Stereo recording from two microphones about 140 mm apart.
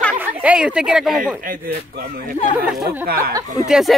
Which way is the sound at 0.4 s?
10° right (ahead or behind).